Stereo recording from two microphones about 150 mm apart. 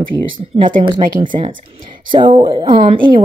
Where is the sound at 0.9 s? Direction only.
60° right (ahead or behind).